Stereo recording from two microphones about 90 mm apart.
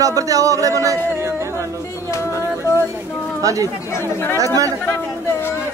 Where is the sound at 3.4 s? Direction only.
40° right (ahead or behind).